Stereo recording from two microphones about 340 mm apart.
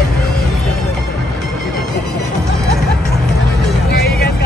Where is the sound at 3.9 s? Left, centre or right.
Left.